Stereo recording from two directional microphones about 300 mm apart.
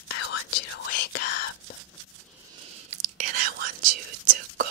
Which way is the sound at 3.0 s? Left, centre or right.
Right.